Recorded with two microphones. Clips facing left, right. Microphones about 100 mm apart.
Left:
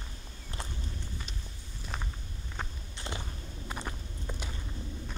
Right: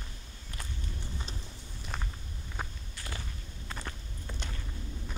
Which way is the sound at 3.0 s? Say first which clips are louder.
Left 3 dB; 20° left (ahead or behind).